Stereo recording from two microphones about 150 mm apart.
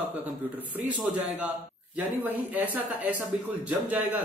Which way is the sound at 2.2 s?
10° right (ahead or behind).